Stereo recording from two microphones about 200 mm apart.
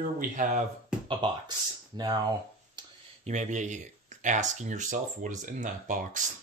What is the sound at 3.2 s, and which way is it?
Speech, 35° right (ahead or behind).